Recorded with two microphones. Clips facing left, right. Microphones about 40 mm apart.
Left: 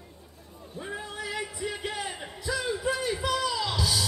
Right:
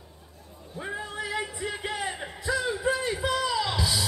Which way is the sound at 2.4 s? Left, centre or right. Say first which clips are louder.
Right 3 dB; right.